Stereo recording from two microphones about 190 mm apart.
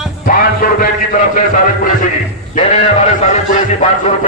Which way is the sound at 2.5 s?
35° left (ahead or behind).